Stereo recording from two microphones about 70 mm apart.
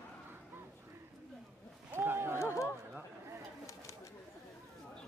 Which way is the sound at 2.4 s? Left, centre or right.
Left.